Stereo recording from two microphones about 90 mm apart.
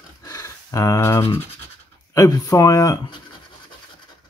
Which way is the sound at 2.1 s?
40° left (ahead or behind).